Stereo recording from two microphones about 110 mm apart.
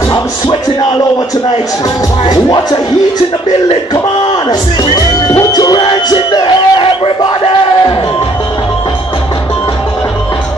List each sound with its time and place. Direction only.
2.2 s speech: 40° left (ahead or behind)
5.3 s music: 35° left (ahead or behind)
6.3 s crowd: 40° left (ahead or behind)